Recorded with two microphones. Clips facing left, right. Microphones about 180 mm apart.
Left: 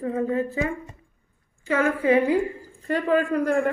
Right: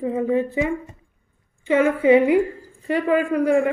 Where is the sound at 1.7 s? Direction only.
20° right (ahead or behind).